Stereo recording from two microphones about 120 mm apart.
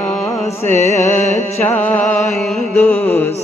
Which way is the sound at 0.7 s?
70° left (ahead or behind).